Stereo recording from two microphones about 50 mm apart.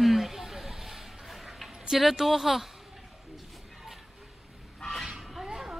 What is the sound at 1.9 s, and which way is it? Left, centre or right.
Speech, centre.